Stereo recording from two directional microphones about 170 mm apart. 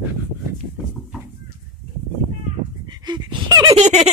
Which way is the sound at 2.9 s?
25° right (ahead or behind).